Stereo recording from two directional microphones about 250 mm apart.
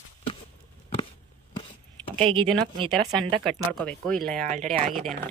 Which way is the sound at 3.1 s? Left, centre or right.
Centre.